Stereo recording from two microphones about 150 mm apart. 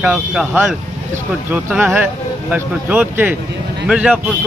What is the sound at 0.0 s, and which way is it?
Speech, 5° right (ahead or behind).